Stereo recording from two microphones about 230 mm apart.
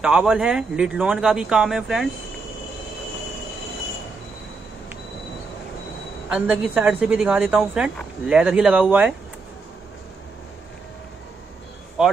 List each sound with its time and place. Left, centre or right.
0.0 s speech: centre
6.2 s speech: centre
12.0 s speech: centre